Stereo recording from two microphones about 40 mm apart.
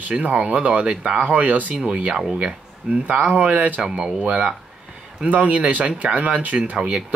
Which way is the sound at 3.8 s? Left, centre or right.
Right.